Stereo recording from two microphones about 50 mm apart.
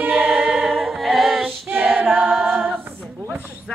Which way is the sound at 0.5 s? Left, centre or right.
Centre.